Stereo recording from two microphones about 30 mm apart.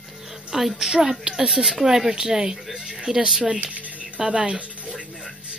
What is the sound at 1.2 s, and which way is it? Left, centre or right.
Speech, right.